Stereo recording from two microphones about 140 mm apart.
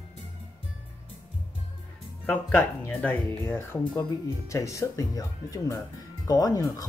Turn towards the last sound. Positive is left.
turn(degrees=25)  # may be behind; listen again after turning